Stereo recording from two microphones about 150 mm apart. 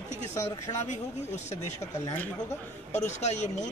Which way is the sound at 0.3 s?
20° left (ahead or behind).